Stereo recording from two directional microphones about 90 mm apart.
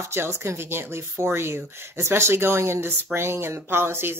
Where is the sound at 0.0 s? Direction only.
30° right (ahead or behind).